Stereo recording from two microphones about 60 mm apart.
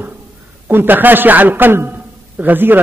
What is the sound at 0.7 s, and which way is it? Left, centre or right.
A man's voice, right.